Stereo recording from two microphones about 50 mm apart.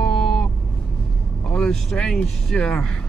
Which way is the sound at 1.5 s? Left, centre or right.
Centre.